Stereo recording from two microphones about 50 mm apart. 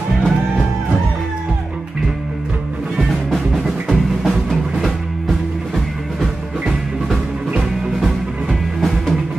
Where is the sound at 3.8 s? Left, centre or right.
Centre.